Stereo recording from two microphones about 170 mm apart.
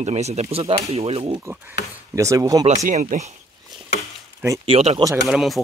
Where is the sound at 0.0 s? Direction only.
40° right (ahead or behind).